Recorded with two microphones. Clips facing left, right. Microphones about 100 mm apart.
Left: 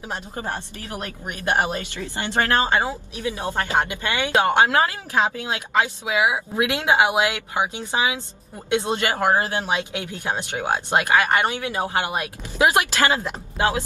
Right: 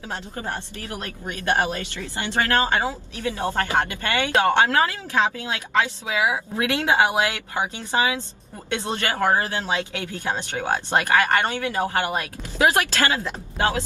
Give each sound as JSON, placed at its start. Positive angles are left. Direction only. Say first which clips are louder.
{"t": 0.1, "sound": "speech", "louder": "left 1 dB", "side_deg": 20}